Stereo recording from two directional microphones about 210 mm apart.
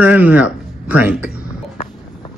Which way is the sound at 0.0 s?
5° right (ahead or behind).